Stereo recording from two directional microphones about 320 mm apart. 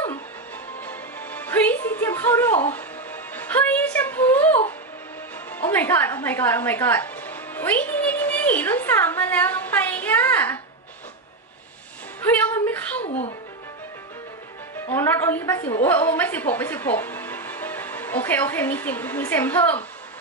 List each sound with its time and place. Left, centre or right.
0.7 s music: centre
12.2 s music: centre
13.0 s speech: left
14.9 s a woman's voice: centre